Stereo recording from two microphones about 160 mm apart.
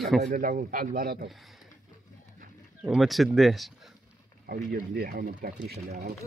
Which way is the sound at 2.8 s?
Centre (ahead or behind).